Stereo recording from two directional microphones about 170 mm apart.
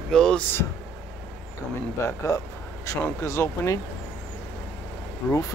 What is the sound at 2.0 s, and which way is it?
Speech, 15° left (ahead or behind).